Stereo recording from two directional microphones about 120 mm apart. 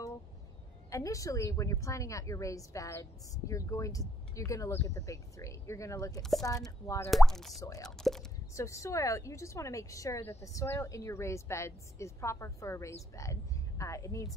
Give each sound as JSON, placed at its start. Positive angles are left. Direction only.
{"t": 0.8, "sound": "a woman's voice", "side_deg": 25}
{"t": 7.1, "sound": "speech", "side_deg": 0}
{"t": 7.6, "sound": "a woman's voice", "side_deg": 30}
{"t": 7.9, "sound": "speech", "side_deg": 5}
{"t": 8.5, "sound": "a woman's voice", "side_deg": 25}